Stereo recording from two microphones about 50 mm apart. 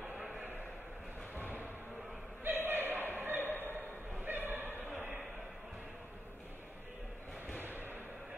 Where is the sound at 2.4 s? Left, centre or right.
Right.